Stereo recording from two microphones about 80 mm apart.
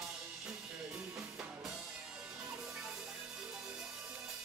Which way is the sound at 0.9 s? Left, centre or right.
Centre.